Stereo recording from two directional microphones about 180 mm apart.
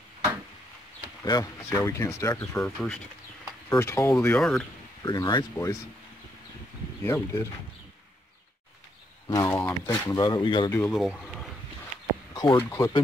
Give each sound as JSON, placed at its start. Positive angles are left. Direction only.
{"t": 1.2, "sound": "speech", "side_deg": 20}
{"t": 4.4, "sound": "speech", "side_deg": 0}
{"t": 5.0, "sound": "speech", "side_deg": 25}
{"t": 7.0, "sound": "speech", "side_deg": 15}
{"t": 9.3, "sound": "speech", "side_deg": 20}
{"t": 10.2, "sound": "speech", "side_deg": 25}
{"t": 10.9, "sound": "speech", "side_deg": 0}
{"t": 12.5, "sound": "speech", "side_deg": 15}